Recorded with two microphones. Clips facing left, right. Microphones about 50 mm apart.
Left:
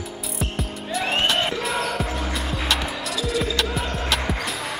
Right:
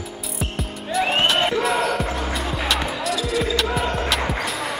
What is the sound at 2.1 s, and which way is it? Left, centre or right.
Music, centre.